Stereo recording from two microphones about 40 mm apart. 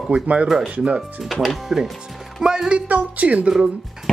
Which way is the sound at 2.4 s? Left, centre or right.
Right.